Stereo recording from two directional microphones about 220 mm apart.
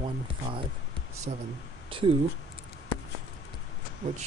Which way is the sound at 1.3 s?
30° right (ahead or behind).